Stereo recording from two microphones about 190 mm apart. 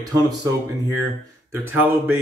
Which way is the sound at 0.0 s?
20° right (ahead or behind).